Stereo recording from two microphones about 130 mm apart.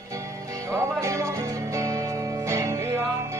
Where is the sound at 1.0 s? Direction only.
25° right (ahead or behind).